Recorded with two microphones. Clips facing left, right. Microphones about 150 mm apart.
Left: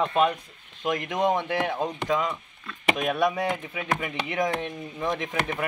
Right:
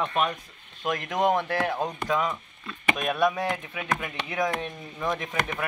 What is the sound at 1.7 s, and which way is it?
A man's voice, centre (ahead or behind).